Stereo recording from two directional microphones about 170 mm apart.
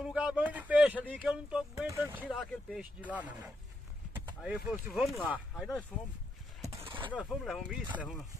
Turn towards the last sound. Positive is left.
turn(degrees=-5)  # may be behind; listen again after turning